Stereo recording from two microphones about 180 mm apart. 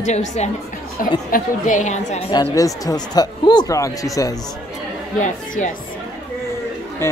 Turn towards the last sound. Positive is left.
turn(degrees=15)  # may be behind; listen again after turning